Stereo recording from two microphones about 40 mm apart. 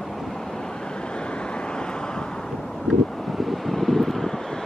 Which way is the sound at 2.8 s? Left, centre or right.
Centre.